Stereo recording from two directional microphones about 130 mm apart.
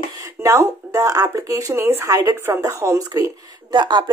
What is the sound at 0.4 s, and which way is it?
A woman's voice, 25° right (ahead or behind).